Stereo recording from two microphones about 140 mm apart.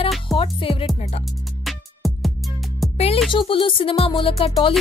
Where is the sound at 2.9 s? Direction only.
45° left (ahead or behind).